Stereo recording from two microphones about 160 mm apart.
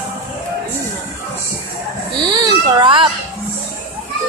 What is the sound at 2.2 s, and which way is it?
Speech, 25° right (ahead or behind).